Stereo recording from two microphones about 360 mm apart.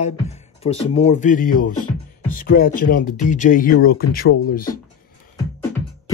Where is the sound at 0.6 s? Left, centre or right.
Centre.